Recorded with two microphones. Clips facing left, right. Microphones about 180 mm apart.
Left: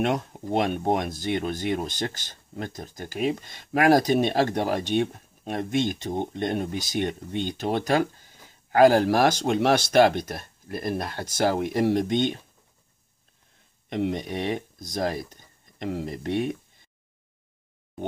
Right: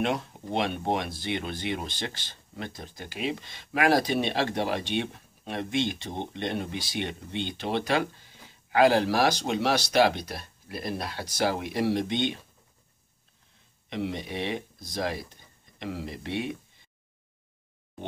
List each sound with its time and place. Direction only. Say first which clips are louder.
0.0 s speech: left 3 dB; 45° left (ahead or behind)
13.8 s speech: left 5 dB; 50° left (ahead or behind)